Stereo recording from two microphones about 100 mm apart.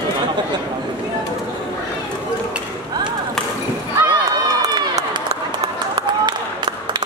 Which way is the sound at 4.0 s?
45° right (ahead or behind).